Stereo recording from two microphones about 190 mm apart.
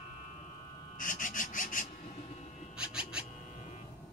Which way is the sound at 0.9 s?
45° left (ahead or behind).